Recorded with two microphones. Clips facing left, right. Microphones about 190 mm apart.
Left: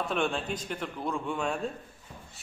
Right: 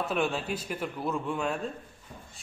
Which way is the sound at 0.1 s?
5° right (ahead or behind).